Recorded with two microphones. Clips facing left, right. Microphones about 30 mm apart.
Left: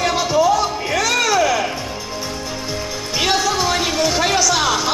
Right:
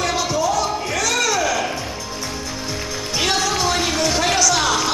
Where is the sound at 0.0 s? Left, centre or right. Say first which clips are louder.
Left 4 dB; centre.